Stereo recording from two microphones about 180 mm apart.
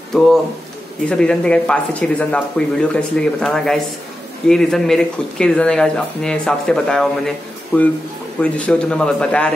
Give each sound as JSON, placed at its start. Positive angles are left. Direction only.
{"t": 1.0, "sound": "speech", "side_deg": 5}